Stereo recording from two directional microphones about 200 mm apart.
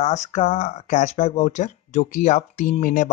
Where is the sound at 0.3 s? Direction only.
35° left (ahead or behind).